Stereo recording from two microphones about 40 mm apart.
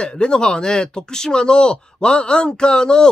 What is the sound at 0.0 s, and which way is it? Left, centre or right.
Speech, left.